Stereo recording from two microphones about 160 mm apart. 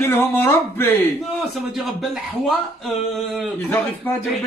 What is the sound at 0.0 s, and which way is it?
Speech, 15° left (ahead or behind).